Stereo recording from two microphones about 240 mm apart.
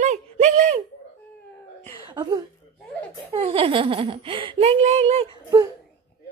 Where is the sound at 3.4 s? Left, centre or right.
Right.